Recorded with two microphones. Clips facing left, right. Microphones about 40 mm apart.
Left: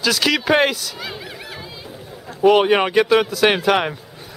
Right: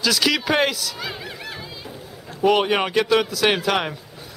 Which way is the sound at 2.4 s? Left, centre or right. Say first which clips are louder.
Left 4 dB; centre.